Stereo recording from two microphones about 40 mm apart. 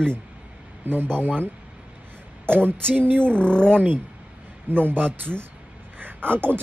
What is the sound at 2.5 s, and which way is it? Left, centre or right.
Speech, right.